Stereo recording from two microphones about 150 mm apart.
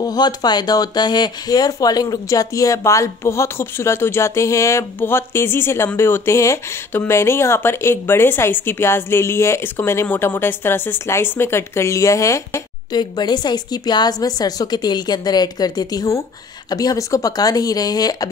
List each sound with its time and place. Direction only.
0.0 s speech: 25° left (ahead or behind)